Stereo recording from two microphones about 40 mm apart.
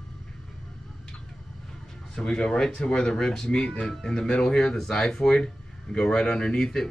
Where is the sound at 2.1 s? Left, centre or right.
Centre.